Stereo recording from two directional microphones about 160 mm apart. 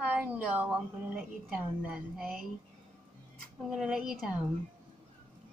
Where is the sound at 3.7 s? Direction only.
5° right (ahead or behind).